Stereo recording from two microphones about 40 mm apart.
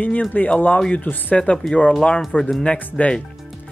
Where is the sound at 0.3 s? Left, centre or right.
Left.